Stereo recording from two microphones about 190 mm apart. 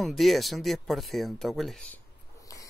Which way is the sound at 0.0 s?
Centre (ahead or behind).